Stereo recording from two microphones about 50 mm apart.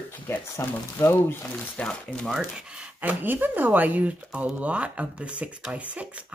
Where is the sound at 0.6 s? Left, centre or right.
Left.